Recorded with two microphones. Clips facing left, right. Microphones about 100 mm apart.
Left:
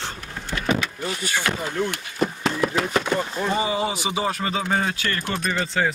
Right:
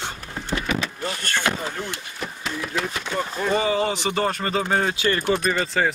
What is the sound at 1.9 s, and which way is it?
Speech, 60° left (ahead or behind).